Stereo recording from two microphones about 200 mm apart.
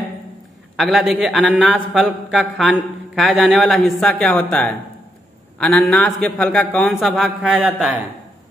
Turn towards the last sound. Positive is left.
turn(degrees=-5)  # may be behind; listen again after turning